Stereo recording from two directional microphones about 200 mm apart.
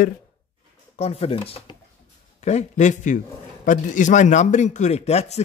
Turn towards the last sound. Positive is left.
turn(degrees=35)  # may be behind; listen again after turning